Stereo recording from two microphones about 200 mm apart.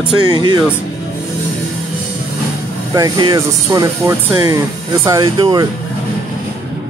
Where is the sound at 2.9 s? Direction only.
20° right (ahead or behind).